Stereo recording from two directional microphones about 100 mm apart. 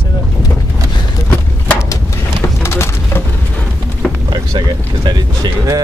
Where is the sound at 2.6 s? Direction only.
25° left (ahead or behind).